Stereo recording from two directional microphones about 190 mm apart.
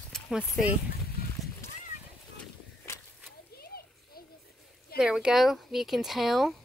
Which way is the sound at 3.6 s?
55° left (ahead or behind).